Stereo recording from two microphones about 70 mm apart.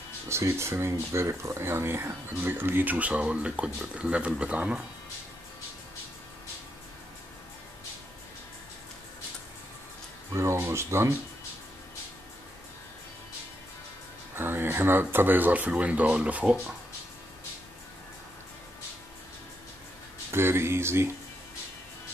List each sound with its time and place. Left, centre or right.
0.3 s speech: right; by 4.8 s centre
10.3 s speech: right
14.3 s speech: right
20.2 s speech: right